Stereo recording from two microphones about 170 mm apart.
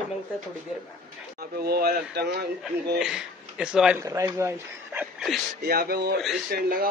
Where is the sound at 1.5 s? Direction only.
65° right (ahead or behind).